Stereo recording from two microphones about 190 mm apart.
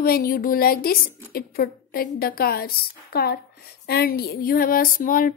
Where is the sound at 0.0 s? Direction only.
50° left (ahead or behind).